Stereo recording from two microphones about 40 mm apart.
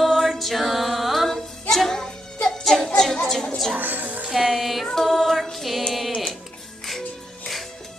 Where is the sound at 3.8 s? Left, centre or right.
Right.